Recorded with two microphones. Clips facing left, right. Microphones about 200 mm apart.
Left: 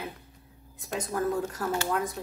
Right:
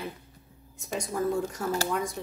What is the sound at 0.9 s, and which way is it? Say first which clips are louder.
A woman's voice: even; centre (ahead or behind).